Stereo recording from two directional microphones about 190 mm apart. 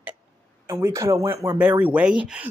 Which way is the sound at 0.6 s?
15° right (ahead or behind).